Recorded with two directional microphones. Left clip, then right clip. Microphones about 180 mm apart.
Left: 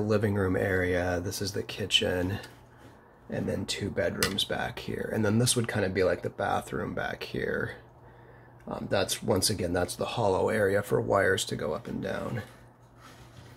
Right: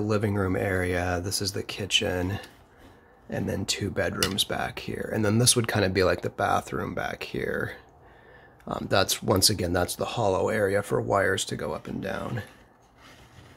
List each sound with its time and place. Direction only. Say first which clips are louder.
0.0 s speech: right 1 dB; 15° right (ahead or behind)
5.5 s speech: right 5 dB; 30° right (ahead or behind)
8.6 s speech: right 4 dB; 35° right (ahead or behind); by 12.4 s 15° right (ahead or behind)